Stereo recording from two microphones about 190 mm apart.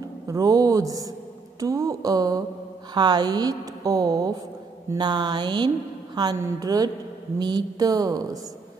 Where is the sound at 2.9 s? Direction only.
20° right (ahead or behind).